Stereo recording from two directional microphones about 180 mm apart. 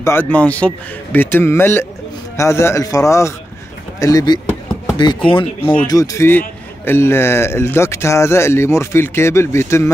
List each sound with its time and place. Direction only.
0.0 s a man's voice: 10° left (ahead or behind); by 5.5 s 30° left (ahead or behind)
5.6 s a man's voice: 10° left (ahead or behind)